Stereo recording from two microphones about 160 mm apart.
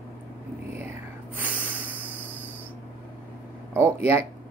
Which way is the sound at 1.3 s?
10° right (ahead or behind).